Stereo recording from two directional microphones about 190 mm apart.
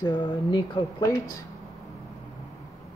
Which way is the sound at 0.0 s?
25° left (ahead or behind).